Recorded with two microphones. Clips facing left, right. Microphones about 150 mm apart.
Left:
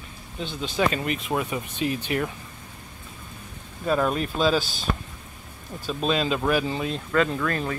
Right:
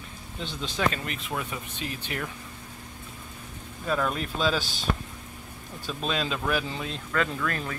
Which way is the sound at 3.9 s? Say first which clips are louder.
Left 4 dB; 30° left (ahead or behind).